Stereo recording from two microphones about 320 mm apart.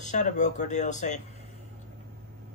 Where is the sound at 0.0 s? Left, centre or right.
Left.